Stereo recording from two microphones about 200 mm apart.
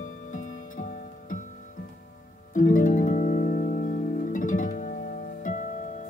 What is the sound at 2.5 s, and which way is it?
Music, 40° left (ahead or behind).